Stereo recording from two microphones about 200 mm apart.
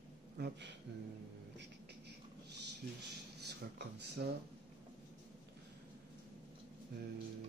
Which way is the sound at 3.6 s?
55° right (ahead or behind).